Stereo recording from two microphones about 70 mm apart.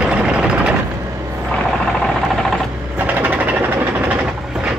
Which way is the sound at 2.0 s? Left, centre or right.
Centre.